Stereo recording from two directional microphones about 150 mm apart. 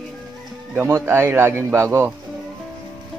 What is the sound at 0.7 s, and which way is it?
Speech, 15° right (ahead or behind).